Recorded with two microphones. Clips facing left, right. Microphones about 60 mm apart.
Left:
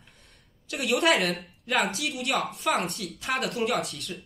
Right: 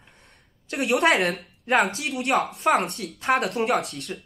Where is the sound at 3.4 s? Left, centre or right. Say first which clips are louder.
Right 4 dB; right.